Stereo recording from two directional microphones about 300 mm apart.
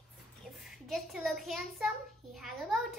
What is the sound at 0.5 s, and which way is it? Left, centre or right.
A child's voice, centre.